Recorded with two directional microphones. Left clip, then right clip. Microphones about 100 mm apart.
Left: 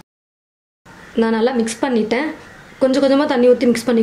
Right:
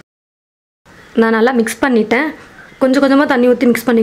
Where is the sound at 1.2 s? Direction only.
40° right (ahead or behind).